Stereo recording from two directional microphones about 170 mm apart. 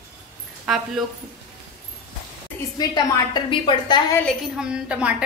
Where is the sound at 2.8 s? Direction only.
25° left (ahead or behind).